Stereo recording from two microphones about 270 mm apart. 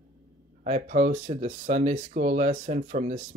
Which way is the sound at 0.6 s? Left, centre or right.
Right.